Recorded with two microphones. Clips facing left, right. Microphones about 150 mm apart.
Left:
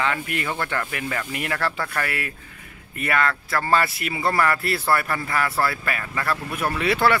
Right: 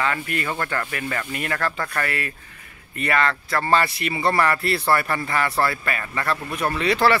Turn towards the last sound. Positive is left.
turn(degrees=5)  # may be behind; listen again after turning